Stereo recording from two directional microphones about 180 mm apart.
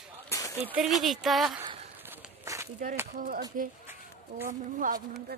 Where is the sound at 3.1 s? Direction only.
55° right (ahead or behind).